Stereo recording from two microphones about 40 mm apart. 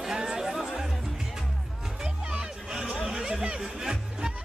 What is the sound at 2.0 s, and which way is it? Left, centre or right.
Music, centre.